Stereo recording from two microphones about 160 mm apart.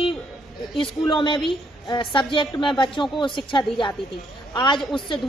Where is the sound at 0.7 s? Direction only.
30° left (ahead or behind).